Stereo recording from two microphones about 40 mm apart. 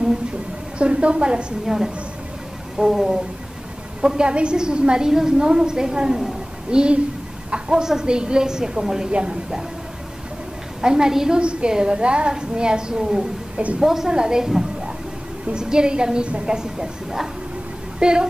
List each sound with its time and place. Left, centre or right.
0.7 s a woman's voice: right
2.8 s a woman's voice: centre
6.7 s a woman's voice: right
10.8 s a woman's voice: centre